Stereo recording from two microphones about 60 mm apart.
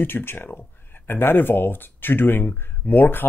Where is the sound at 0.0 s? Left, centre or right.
Left.